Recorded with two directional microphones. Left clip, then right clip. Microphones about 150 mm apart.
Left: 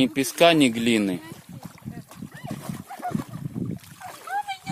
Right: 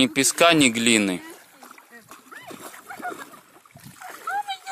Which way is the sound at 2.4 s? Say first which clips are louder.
Left 2 dB; 30° left (ahead or behind).